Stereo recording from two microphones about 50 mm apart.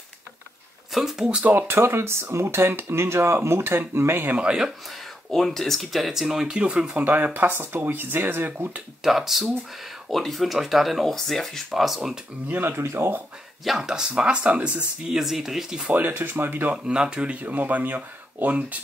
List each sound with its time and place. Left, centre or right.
0.9 s speech: centre
1.7 s speech: right
4.4 s speech: centre
5.3 s speech: centre
6.9 s speech: right
9.0 s speech: centre
12.4 s speech: right
13.7 s speech: centre
15.0 s speech: centre
15.9 s speech: right
16.7 s speech: centre
17.4 s speech: right